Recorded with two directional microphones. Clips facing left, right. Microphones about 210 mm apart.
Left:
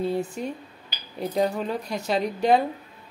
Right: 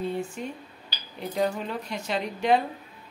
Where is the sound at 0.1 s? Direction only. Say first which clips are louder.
Left 4 dB; 40° left (ahead or behind).